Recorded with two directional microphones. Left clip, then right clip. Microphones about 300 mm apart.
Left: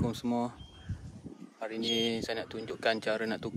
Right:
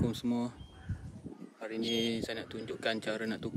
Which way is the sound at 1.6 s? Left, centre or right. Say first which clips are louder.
Left 3 dB; centre.